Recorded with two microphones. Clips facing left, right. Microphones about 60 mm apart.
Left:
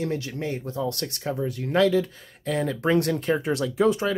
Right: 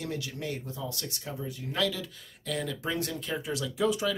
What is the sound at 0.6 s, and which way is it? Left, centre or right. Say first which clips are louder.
Speech: left 9 dB; left.